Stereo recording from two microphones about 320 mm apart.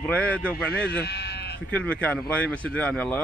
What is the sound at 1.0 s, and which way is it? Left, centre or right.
Sheep, left.